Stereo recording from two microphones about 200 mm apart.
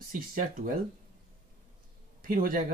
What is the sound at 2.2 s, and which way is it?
Speech, 45° right (ahead or behind).